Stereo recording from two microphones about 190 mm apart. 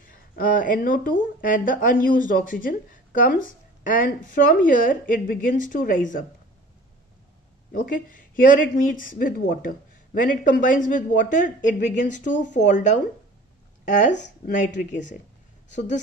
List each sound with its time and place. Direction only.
0.1 s speech: 45° left (ahead or behind)
7.7 s speech: 45° left (ahead or behind)
14.1 s speech: 70° left (ahead or behind)
14.5 s speech: 40° left (ahead or behind)